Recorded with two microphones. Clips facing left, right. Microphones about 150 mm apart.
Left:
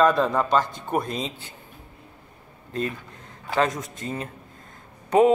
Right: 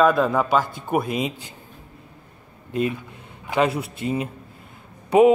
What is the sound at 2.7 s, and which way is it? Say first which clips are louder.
A man's voice: right 5 dB; 15° right (ahead or behind).